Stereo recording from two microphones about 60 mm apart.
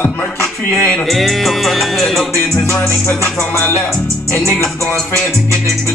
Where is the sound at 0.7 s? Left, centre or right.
Left.